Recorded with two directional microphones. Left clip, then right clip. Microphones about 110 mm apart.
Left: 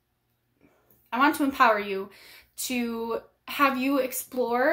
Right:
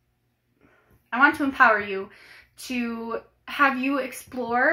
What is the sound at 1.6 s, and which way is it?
A woman's voice, 20° left (ahead or behind).